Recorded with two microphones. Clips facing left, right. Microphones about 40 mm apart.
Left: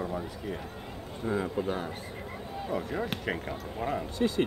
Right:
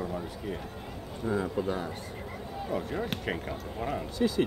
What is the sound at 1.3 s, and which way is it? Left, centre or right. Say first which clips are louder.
Speech: even; centre.